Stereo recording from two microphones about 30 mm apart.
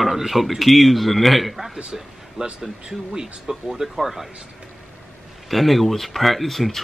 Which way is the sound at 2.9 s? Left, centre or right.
Right.